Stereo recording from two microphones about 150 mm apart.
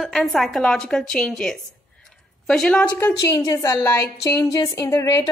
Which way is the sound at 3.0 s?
20° left (ahead or behind).